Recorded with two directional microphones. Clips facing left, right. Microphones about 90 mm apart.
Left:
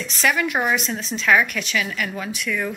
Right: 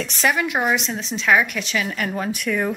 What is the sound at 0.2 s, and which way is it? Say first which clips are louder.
A woman's voice: even; 20° right (ahead or behind).